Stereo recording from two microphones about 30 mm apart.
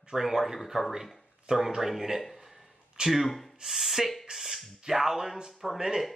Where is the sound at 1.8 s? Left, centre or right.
Centre.